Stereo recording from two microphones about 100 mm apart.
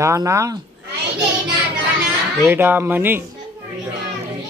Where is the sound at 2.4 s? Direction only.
20° right (ahead or behind).